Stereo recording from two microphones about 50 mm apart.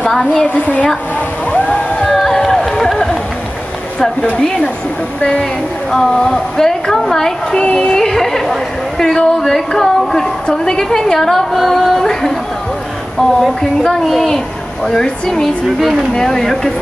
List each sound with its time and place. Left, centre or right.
0.1 s a woman's voice: centre
0.6 s speech: left
1.5 s a sound: left
2.0 s run: centre
4.3 s speech: centre
5.9 s a woman's voice: centre